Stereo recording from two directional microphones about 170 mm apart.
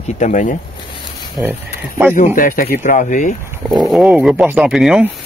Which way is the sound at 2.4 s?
55° left (ahead or behind).